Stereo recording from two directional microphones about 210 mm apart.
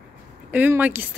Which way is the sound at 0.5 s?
10° right (ahead or behind).